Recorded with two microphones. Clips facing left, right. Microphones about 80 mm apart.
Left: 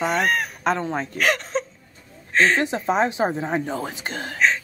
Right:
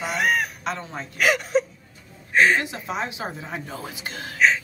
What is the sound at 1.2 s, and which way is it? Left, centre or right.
A woman's voice, centre.